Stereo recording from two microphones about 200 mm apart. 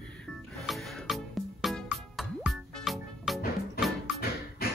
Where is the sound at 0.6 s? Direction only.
Centre (ahead or behind).